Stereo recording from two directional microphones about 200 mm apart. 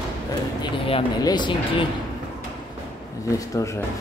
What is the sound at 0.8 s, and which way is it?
Speech, 25° left (ahead or behind).